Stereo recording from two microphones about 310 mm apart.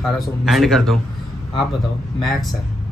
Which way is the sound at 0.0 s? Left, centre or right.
Centre.